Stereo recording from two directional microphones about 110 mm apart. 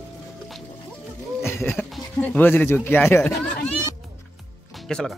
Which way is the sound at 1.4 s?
20° left (ahead or behind).